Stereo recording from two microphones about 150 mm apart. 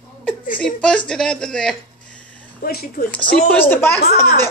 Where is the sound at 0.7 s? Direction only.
5° left (ahead or behind).